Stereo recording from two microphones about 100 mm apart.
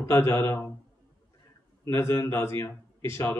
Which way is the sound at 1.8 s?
30° left (ahead or behind).